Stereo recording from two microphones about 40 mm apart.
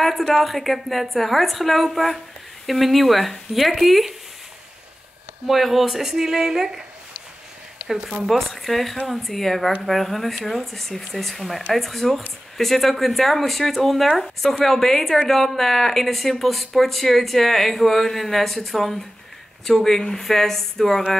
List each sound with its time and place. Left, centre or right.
0.3 s speech: centre
5.5 s speech: centre
7.8 s a sound: right
8.3 s speech: centre